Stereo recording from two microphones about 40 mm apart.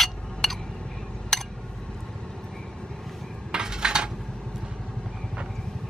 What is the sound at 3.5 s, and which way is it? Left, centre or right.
Dishes, centre.